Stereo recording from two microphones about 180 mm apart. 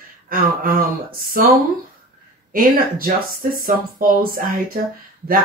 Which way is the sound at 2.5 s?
55° right (ahead or behind).